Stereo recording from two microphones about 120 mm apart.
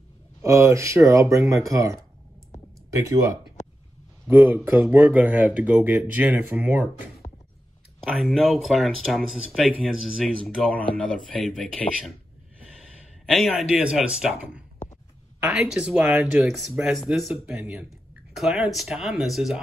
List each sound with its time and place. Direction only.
0.4 s speech: 25° right (ahead or behind)
4.3 s speech: 20° right (ahead or behind)
8.1 s speech: centre (ahead or behind)
13.3 s speech: centre (ahead or behind)